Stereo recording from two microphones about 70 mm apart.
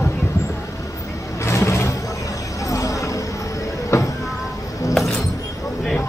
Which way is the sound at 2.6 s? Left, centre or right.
Left.